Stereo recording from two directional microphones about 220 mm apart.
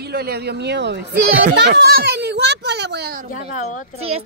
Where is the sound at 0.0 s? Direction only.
45° right (ahead or behind).